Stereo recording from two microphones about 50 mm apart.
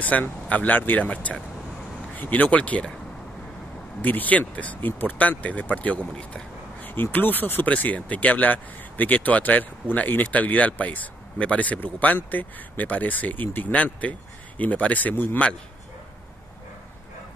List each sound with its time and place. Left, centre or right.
0.0 s speech: left
4.0 s speech: left
6.8 s speech: left
7.7 s speech: left